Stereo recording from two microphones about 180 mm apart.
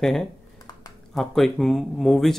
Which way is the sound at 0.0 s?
Centre (ahead or behind).